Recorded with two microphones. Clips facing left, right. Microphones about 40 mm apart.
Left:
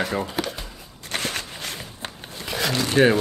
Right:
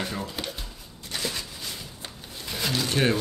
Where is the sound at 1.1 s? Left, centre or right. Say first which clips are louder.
Left 4 dB; left.